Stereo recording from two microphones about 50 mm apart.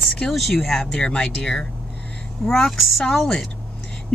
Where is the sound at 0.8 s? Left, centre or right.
Centre.